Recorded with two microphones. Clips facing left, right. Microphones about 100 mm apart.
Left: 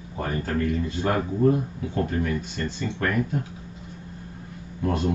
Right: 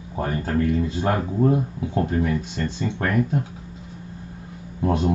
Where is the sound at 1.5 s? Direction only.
20° right (ahead or behind).